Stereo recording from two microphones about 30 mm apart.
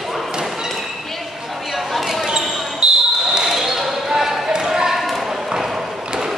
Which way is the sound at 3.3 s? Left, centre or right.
Centre.